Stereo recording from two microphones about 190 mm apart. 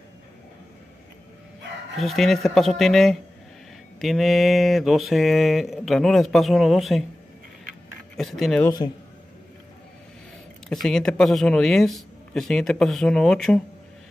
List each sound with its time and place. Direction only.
2.0 s speech: centre (ahead or behind)
8.2 s speech: centre (ahead or behind)
8.6 s a man's voice: 20° left (ahead or behind)
10.7 s speech: 5° left (ahead or behind)